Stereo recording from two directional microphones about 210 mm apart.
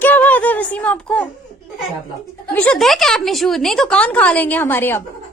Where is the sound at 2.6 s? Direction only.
5° left (ahead or behind).